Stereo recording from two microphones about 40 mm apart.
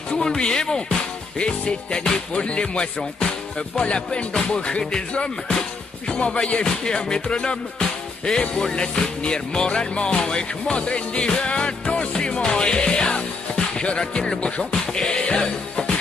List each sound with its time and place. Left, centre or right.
0.4 s speech: centre
1.4 s music: left
3.0 s music: centre; by 12.1 s left
12.1 s music: left